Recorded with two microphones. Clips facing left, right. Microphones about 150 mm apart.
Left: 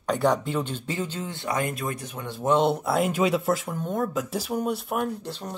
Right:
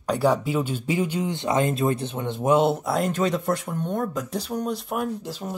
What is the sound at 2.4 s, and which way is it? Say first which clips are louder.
Speech: right 2 dB; 5° right (ahead or behind).